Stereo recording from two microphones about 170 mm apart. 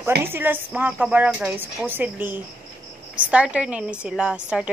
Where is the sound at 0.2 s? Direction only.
10° right (ahead or behind).